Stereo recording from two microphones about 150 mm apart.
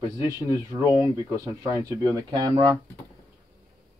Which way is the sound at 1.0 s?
20° right (ahead or behind).